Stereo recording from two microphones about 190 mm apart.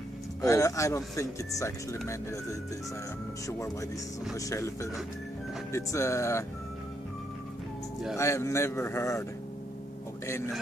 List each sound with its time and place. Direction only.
0.4 s speech: 15° left (ahead or behind)
3.4 s speech: 15° left (ahead or behind)
8.2 s speech: 15° left (ahead or behind)
10.2 s speech: 15° left (ahead or behind)